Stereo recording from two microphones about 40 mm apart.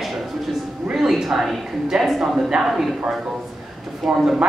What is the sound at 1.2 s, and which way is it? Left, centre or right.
A man's voice, centre.